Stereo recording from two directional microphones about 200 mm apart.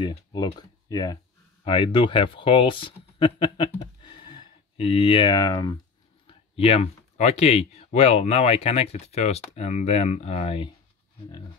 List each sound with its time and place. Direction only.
0.0 s speech: 20° left (ahead or behind)